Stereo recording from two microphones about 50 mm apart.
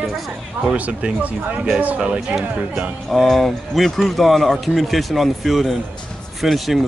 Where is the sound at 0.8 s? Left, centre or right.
Right.